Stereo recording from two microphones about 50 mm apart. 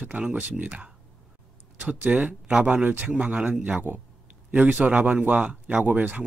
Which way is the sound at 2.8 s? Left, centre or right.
Right.